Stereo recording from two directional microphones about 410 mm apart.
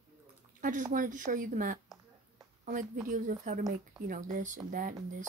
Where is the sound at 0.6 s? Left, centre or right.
Centre.